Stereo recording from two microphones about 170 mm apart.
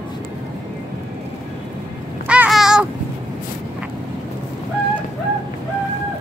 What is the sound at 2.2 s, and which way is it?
Babbling, 5° right (ahead or behind).